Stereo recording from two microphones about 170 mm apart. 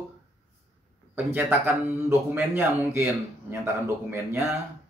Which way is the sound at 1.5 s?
10° right (ahead or behind).